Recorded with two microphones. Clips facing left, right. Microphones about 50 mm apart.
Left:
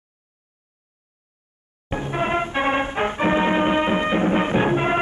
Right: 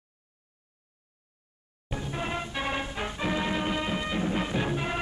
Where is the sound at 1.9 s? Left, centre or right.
Left.